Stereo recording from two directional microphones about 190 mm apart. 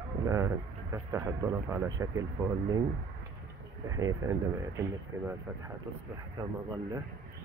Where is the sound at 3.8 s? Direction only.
20° right (ahead or behind).